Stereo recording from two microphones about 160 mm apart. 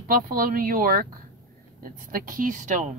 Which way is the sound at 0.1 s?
60° right (ahead or behind).